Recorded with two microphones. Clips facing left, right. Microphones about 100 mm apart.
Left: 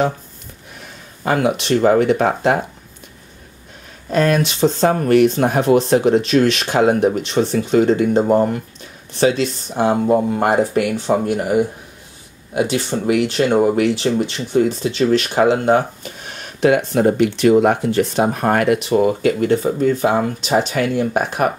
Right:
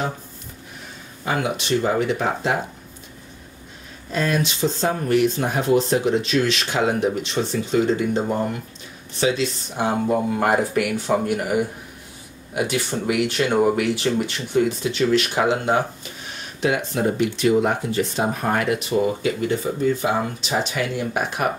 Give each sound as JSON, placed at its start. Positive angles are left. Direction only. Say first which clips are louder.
{"t": 1.2, "sound": "speech", "louder": "left 6 dB", "side_deg": 50}
{"t": 4.1, "sound": "speech", "louder": "left 6 dB", "side_deg": 55}